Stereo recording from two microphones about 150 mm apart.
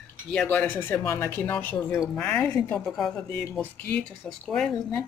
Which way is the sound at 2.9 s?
Centre (ahead or behind).